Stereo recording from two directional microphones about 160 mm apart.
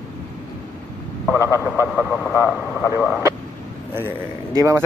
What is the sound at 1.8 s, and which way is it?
Vehicle, 5° right (ahead or behind).